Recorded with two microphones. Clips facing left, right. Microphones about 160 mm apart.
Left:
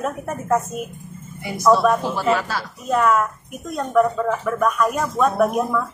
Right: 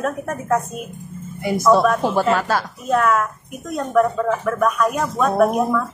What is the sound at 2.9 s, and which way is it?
A woman's voice, centre (ahead or behind).